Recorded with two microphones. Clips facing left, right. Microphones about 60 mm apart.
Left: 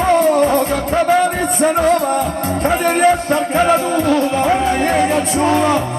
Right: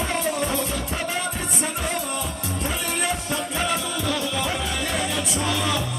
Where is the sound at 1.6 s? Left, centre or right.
Left.